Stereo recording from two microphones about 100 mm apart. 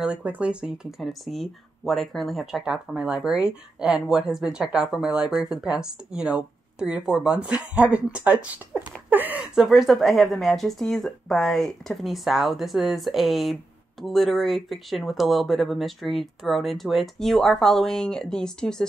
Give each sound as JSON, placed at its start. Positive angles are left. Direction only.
{"t": 0.0, "sound": "speech", "side_deg": -15}
{"t": 9.6, "sound": "speech", "side_deg": -5}